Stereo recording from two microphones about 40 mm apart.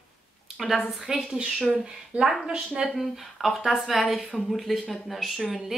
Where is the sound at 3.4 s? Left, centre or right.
Centre.